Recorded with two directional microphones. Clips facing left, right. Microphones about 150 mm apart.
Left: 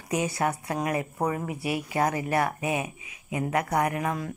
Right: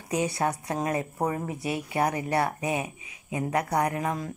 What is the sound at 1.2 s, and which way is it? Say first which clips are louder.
Speech: left 1 dB; 25° right (ahead or behind).